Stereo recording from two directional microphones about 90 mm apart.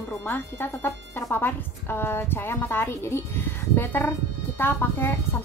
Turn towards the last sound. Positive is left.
turn(degrees=25)  # may be behind; listen again after turning